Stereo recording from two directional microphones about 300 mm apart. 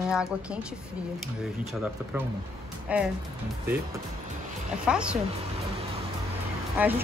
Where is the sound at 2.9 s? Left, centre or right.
Centre.